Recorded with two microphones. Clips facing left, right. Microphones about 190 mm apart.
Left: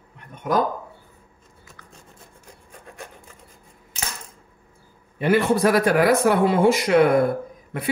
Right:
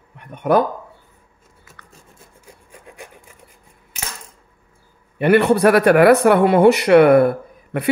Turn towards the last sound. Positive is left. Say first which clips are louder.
# right 5 dB
turn(degrees=-65)  # may be behind; listen again after turning